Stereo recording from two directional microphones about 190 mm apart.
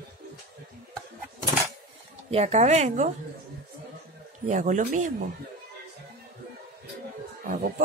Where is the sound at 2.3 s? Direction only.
35° right (ahead or behind).